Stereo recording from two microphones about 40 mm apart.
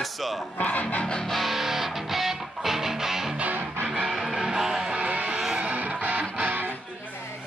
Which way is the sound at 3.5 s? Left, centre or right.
Right.